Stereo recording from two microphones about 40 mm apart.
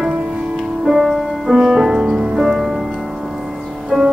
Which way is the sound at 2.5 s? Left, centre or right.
Centre.